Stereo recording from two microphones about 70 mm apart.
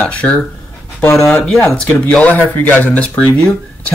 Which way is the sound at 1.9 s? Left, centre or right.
Centre.